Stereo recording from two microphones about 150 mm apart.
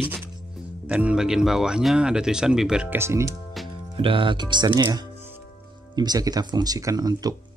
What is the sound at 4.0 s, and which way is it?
Speech, 35° right (ahead or behind).